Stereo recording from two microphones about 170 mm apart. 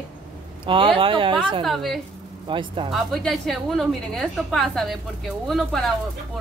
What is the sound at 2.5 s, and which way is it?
Speech, 30° right (ahead or behind).